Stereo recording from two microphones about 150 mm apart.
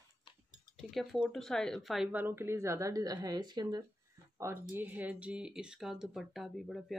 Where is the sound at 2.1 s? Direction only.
15° right (ahead or behind).